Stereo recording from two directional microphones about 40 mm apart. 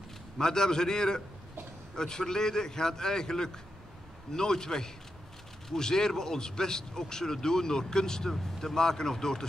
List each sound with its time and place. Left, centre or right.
0.4 s speech: centre